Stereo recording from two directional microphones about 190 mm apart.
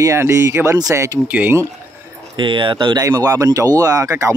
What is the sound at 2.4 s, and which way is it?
Speech, 25° right (ahead or behind).